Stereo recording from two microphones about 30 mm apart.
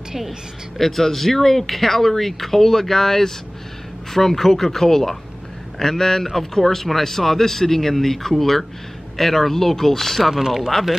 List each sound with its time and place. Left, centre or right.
0.7 s speech: centre
10.3 s speech: centre